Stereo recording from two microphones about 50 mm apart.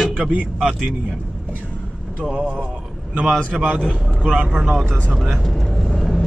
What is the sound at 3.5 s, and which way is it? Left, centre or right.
Speech, right.